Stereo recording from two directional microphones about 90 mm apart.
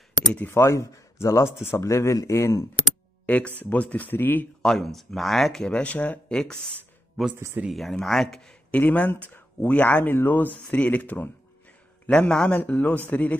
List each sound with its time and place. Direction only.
0.3 s speech: 20° left (ahead or behind)
3.3 s speech: 15° left (ahead or behind)
4.6 s speech: 5° left (ahead or behind)
7.3 s speech: 30° right (ahead or behind)
7.6 s speech: centre (ahead or behind)
8.7 s speech: 20° left (ahead or behind)